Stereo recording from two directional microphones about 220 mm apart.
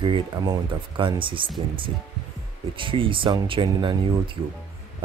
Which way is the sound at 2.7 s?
25° right (ahead or behind).